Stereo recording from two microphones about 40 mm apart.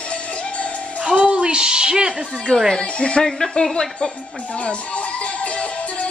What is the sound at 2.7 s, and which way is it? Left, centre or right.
Speech, centre.